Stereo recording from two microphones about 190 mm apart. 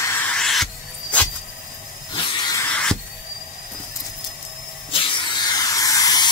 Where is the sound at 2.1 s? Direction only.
25° left (ahead or behind).